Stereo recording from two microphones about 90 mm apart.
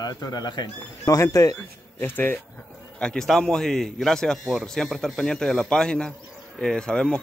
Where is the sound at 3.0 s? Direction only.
5° left (ahead or behind).